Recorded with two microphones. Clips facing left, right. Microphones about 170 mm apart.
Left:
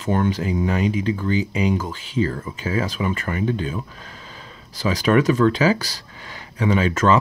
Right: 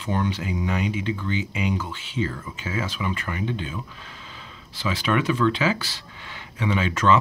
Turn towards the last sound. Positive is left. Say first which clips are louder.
# left 3 dB
turn(degrees=40)  # may be behind; listen again after turning